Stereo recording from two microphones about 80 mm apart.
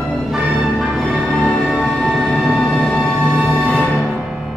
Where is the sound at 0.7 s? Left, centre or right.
Centre.